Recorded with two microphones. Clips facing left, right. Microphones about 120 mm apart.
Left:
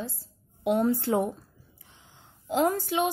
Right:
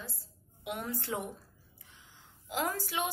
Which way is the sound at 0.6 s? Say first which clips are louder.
Left 13 dB; 30° left (ahead or behind).